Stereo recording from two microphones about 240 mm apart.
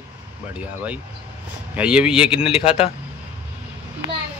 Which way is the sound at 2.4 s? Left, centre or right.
Left.